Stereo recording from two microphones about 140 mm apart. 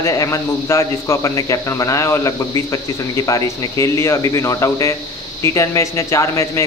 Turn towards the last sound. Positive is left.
turn(degrees=20)  # may be behind; listen again after turning